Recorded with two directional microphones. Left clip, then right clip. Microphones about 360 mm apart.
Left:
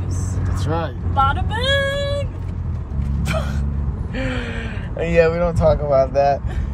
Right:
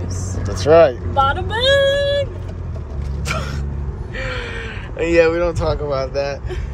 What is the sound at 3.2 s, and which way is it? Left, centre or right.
Speech, centre.